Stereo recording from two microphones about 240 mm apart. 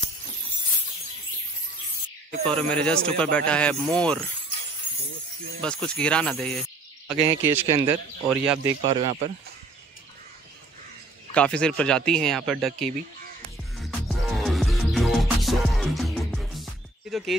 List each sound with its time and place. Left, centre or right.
2.4 s a man's voice: centre
5.6 s a man's voice: centre
7.1 s speech: centre
11.3 s a man's voice: centre
13.7 s music: centre
17.1 s speech: centre